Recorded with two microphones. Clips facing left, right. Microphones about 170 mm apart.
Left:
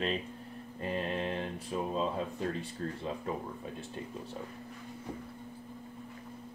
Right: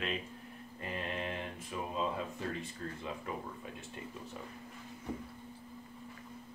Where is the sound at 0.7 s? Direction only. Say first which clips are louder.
Left 5 dB; 35° left (ahead or behind).